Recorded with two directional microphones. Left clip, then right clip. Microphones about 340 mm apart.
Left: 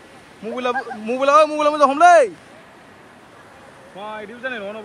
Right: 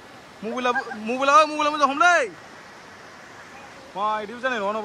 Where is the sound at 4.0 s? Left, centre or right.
Centre.